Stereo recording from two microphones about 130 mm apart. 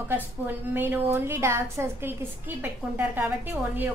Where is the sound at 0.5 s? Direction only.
15° right (ahead or behind).